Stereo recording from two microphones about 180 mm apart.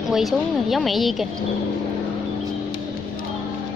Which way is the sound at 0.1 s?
Centre (ahead or behind).